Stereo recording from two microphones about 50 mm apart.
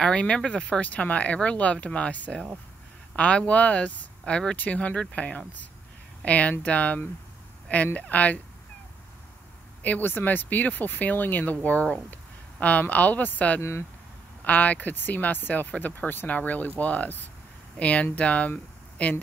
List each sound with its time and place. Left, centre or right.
0.0 s speech: left
4.2 s speech: centre
4.6 s speech: left
9.8 s speech: left
11.6 s speech: left
13.6 s speech: left
14.4 s speech: left